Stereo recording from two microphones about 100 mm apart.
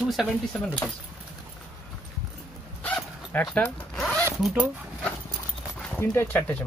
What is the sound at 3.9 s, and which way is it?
Zipper, 5° left (ahead or behind).